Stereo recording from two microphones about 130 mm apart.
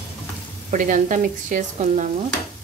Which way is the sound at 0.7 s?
85° right.